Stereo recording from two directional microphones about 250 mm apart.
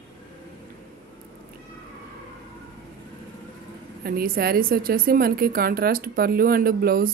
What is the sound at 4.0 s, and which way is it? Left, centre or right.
A woman's voice, right.